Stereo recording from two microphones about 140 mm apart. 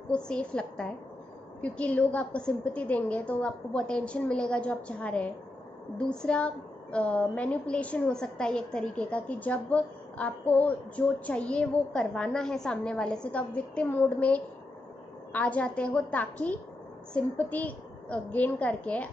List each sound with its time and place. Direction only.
0.1 s a woman's voice: 5° left (ahead or behind)